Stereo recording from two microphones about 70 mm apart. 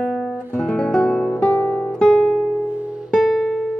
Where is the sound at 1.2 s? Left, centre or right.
Left.